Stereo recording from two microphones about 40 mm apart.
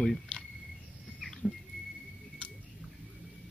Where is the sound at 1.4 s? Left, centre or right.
Centre.